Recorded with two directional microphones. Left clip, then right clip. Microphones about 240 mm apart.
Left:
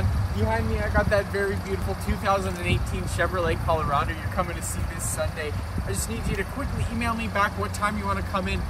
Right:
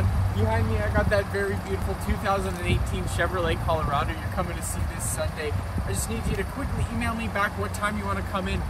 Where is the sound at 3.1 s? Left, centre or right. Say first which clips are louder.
Left 1 dB; centre.